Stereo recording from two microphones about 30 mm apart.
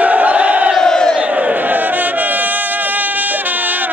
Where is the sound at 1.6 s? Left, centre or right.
Right.